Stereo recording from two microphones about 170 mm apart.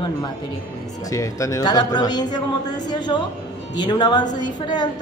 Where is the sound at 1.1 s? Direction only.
20° left (ahead or behind).